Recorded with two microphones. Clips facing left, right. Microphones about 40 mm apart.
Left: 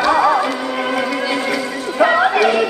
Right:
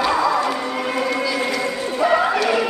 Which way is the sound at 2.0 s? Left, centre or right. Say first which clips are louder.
Left 4 dB; left.